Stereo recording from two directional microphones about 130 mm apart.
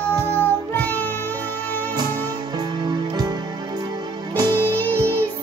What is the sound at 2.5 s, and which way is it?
Music, 35° right (ahead or behind).